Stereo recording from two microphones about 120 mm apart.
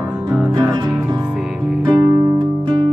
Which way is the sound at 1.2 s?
10° right (ahead or behind).